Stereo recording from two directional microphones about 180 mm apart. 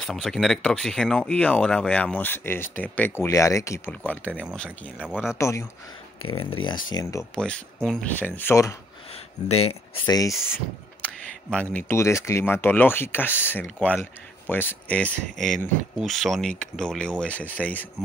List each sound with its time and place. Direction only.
0.0 s speech: 5° left (ahead or behind)
4.6 s speech: 5° right (ahead or behind)
5.4 s speech: 15° left (ahead or behind)
6.3 s speech: 30° left (ahead or behind)
7.3 s speech: 5° left (ahead or behind)
9.5 s speech: 35° left (ahead or behind)
10.0 s speech: 20° left (ahead or behind)
11.7 s speech: 15° left (ahead or behind)